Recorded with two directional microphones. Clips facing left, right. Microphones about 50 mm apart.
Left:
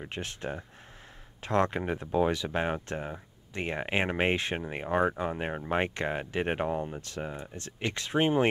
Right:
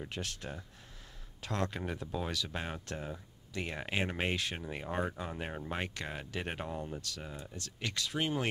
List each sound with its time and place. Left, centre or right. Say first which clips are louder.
0.0 s speech: left 5 dB; left